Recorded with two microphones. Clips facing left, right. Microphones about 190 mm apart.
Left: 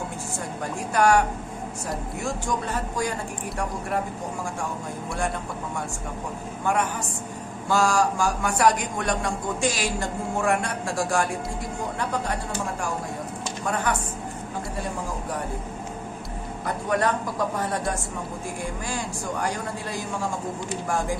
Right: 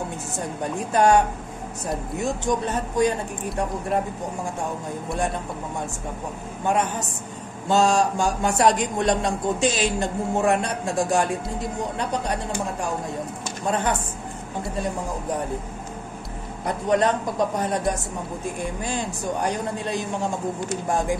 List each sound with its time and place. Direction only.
0.7 s a man's voice: 20° right (ahead or behind)
6.6 s a man's voice: 20° right (ahead or behind)
16.6 s a man's voice: 20° right (ahead or behind)